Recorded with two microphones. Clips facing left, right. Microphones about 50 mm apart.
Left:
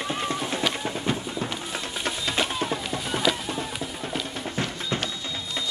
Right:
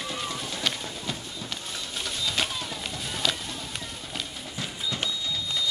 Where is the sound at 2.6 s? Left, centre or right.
Left.